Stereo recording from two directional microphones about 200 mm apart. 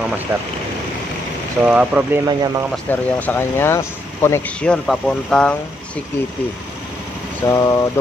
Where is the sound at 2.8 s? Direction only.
10° left (ahead or behind).